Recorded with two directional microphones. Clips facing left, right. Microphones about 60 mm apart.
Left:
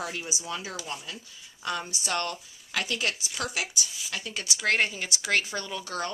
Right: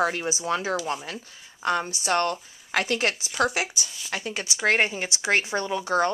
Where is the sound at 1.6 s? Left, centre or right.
Right.